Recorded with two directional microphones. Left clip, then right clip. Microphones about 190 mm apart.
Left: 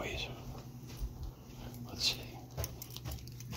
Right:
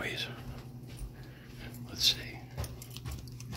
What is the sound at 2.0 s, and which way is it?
Whispering, 5° right (ahead or behind).